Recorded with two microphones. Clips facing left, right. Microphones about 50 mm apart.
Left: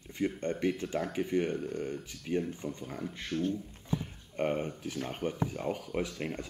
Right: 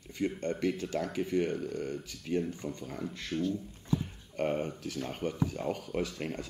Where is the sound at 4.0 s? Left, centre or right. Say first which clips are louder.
Even; centre.